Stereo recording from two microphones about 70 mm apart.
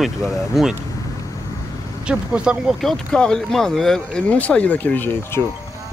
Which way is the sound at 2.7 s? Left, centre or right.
Centre.